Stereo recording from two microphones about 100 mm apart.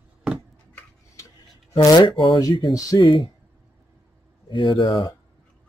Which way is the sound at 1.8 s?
45° left (ahead or behind).